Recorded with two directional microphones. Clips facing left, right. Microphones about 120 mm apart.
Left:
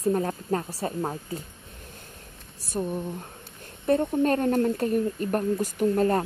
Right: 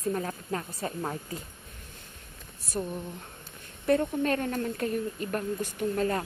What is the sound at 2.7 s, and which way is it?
Speech, 20° left (ahead or behind).